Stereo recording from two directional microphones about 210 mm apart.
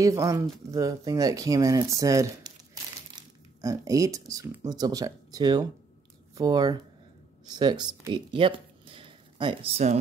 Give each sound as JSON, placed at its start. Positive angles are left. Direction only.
{"t": 0.0, "sound": "speech", "side_deg": -15}